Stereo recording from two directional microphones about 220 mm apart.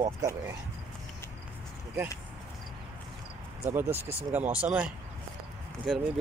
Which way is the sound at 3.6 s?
10° right (ahead or behind).